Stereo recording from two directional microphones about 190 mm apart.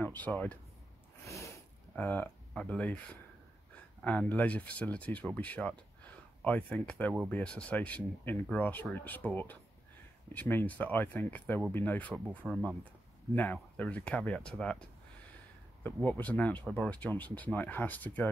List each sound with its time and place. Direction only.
0.0 s speech: 10° left (ahead or behind)
1.2 s a sound: 15° left (ahead or behind)
2.0 s speech: 10° left (ahead or behind)